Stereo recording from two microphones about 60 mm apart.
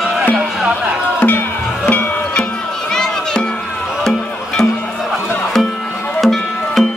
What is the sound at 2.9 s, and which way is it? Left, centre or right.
Music, centre.